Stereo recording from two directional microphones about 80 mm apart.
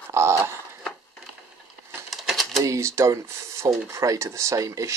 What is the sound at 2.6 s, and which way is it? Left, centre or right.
Speech, right.